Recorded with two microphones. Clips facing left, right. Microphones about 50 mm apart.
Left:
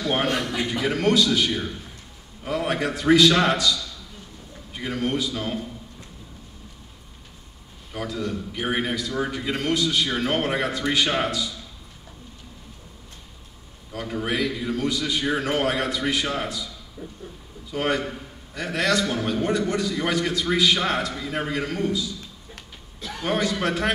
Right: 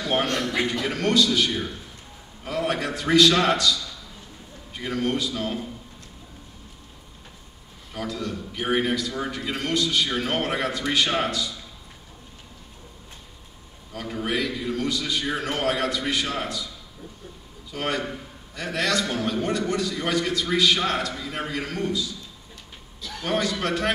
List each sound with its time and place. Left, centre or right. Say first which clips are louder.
0.0 s a man's voice: left 1 dB; centre
4.7 s a man's voice: even; centre
7.9 s a man's voice: left 2 dB; centre
13.9 s a man's voice: left 1 dB; centre
17.0 s speech: left 5 dB; left
17.7 s a man's voice: left 3 dB; centre
23.2 s a man's voice: left 1 dB; centre